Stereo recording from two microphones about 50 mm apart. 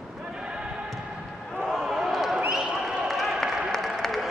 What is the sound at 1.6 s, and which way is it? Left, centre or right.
Basketball bounce, centre.